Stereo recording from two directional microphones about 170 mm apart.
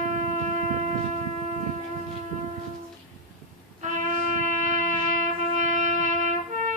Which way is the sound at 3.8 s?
45° right (ahead or behind).